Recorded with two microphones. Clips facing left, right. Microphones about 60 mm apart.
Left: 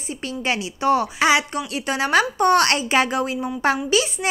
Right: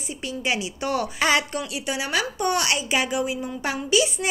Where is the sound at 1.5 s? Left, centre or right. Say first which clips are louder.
Left 3 dB; left.